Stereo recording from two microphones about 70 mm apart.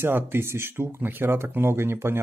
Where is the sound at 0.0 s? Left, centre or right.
Right.